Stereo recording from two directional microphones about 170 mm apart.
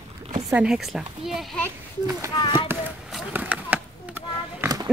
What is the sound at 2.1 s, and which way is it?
Speech, 15° right (ahead or behind).